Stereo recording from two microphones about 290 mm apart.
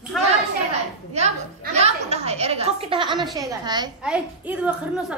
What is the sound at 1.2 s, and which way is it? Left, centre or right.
A woman's voice, right.